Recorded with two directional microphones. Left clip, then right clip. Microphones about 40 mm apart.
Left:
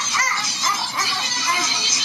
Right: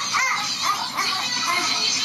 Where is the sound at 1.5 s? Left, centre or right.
Centre.